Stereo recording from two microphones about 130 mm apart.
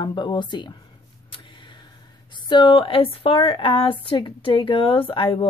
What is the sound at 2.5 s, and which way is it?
A woman's voice, 40° left (ahead or behind).